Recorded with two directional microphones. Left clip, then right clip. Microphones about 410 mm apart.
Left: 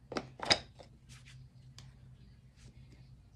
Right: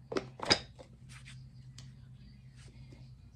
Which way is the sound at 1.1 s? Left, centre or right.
Centre.